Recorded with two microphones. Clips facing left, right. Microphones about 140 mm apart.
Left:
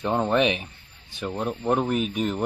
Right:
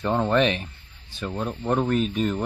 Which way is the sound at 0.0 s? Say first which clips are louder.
Right 1 dB; 15° left (ahead or behind).